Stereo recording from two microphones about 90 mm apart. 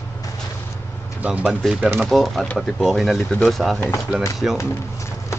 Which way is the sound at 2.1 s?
Centre (ahead or behind).